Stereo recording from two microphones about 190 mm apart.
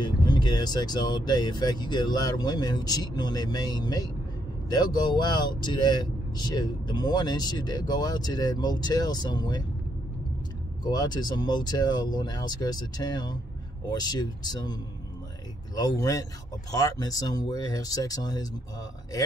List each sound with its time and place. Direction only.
0.0 s speech: 25° left (ahead or behind)
10.8 s speech: 20° left (ahead or behind)